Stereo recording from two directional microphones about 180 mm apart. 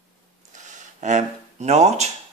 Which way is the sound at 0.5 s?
45° right (ahead or behind).